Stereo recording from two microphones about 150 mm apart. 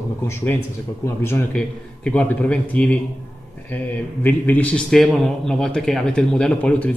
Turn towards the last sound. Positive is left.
turn(degrees=5)  # may be behind; listen again after turning